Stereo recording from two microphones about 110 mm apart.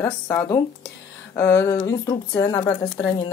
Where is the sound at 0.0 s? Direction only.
25° left (ahead or behind).